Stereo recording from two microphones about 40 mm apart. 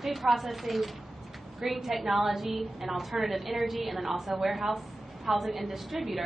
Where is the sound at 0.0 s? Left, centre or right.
Centre.